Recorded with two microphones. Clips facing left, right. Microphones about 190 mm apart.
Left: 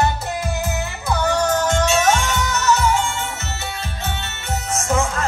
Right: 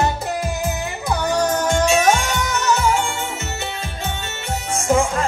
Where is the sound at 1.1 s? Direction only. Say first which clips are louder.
Even; 15° right (ahead or behind).